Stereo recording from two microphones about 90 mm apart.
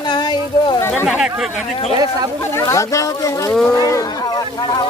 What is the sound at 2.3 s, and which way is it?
Speech, 30° left (ahead or behind).